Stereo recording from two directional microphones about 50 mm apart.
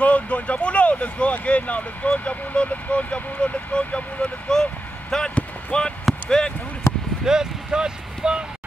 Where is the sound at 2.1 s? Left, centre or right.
Left.